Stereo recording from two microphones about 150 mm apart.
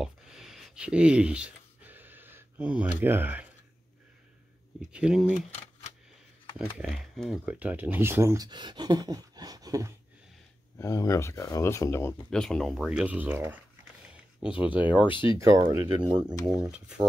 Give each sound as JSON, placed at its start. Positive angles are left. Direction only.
{"t": 0.0, "sound": "a sound", "side_deg": -5}
{"t": 3.0, "sound": "speech", "side_deg": -15}
{"t": 4.9, "sound": "speech", "side_deg": -5}
{"t": 6.8, "sound": "speech", "side_deg": -5}
{"t": 10.8, "sound": "speech", "side_deg": 20}
{"t": 12.3, "sound": "speech", "side_deg": 5}
{"t": 15.0, "sound": "speech", "side_deg": 35}
{"t": 15.3, "sound": "speech", "side_deg": -20}
{"t": 16.6, "sound": "speech", "side_deg": -5}